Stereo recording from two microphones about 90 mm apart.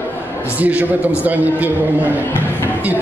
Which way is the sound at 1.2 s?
20° right (ahead or behind).